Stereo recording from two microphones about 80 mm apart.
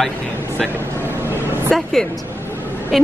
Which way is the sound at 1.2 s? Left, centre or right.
Right.